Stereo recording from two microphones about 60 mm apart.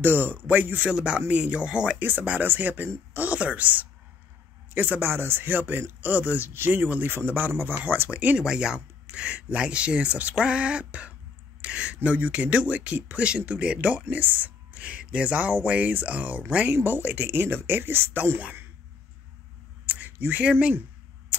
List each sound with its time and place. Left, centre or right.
0.0 s speech: right; by 2.0 s centre
2.0 s speech: right
8.4 s speech: centre
10.3 s a sound: centre
11.6 s speech: right
19.9 s a sound: right
20.3 s speech: right